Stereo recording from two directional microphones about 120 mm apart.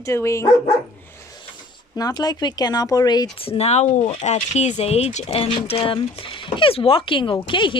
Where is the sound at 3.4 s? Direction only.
55° left (ahead or behind).